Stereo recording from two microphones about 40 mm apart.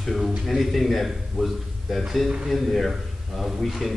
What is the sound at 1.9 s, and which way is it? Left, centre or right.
A man's voice, centre.